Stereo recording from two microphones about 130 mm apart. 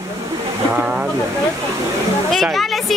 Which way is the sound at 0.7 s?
10° right (ahead or behind).